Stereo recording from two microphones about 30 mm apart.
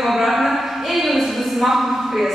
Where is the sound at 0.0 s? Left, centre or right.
Centre.